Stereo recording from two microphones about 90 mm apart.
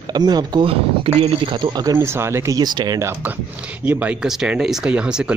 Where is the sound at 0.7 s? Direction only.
85° right; by 2.0 s 50° right (ahead or behind).